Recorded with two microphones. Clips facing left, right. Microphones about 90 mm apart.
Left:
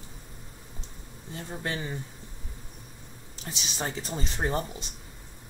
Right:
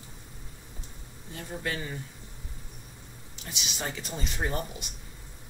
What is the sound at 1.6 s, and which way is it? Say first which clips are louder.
Speech: left 1 dB; 25° left (ahead or behind).